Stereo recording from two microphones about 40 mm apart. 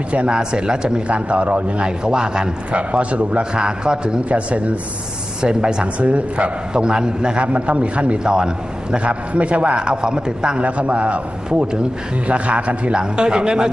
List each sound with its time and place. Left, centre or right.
0.3 s a man's voice: right
1.9 s a man's voice: centre
2.7 s a man's voice: right
3.5 s a man's voice: right
4.3 s a man's voice: right
5.4 s a man's voice: right
5.9 s a man's voice: right
6.7 s a man's voice: centre
8.2 s a man's voice: right
9.8 s a man's voice: right
10.6 s a man's voice: right
12.3 s a man's voice: right
12.9 s a man's voice: right